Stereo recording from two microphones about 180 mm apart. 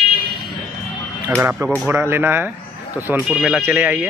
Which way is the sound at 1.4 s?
10° right (ahead or behind).